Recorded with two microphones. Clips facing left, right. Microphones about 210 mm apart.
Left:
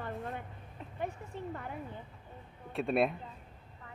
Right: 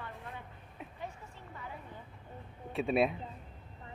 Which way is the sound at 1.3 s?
55° left (ahead or behind).